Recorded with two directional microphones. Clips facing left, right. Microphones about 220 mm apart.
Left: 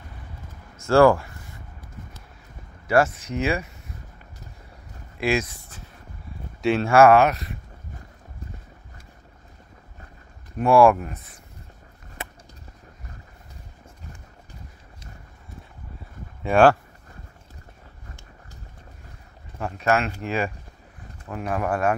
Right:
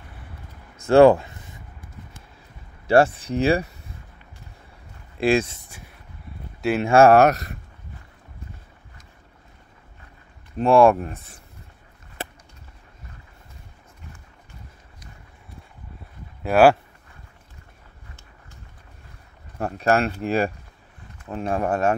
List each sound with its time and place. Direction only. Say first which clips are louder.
0.8 s a sound: right 3 dB; 20° right (ahead or behind)
2.9 s speech: right 3 dB; 30° right (ahead or behind)
5.2 s speech: right 4 dB; 30° right (ahead or behind)
6.8 s speech: right 1 dB; 25° right (ahead or behind)
7.2 s speech: right 3 dB; 45° right (ahead or behind)
10.6 s speech: right 1 dB; 25° right (ahead or behind)
16.4 s speech: right 1 dB; 5° right (ahead or behind)
19.6 s speech: right 2 dB; 35° right (ahead or behind)